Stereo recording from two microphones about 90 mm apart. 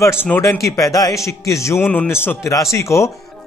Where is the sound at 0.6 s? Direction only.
40° left (ahead or behind).